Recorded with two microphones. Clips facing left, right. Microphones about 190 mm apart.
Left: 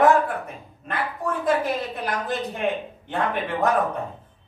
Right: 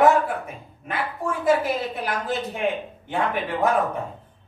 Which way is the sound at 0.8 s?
10° right (ahead or behind).